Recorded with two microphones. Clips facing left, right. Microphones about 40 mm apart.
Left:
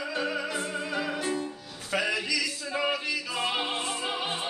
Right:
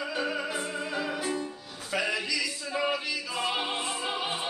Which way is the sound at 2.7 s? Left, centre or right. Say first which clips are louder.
Left 1 dB; centre.